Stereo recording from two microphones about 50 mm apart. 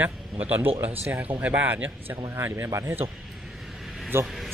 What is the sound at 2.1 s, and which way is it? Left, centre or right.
Speech, right.